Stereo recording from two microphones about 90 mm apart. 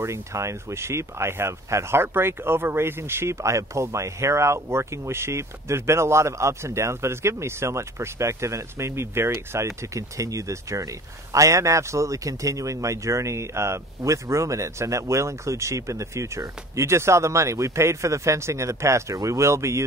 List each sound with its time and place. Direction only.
0.0 s speech: 35° right (ahead or behind)